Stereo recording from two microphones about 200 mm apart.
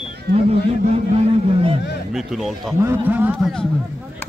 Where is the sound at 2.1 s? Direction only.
Centre (ahead or behind).